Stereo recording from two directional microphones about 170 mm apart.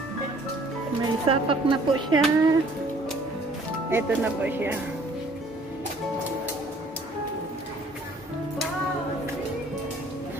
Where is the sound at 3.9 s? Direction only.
10° right (ahead or behind).